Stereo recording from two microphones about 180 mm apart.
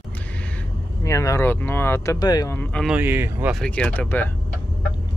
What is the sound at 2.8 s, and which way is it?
Speech, 10° right (ahead or behind).